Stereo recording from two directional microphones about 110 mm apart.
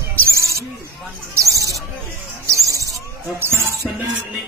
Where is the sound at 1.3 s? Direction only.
30° right (ahead or behind).